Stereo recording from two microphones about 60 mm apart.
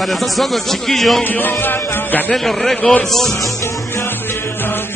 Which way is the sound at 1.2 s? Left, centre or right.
Left.